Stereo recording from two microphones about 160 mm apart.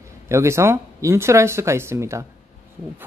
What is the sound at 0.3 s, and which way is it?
A man's voice, 15° right (ahead or behind).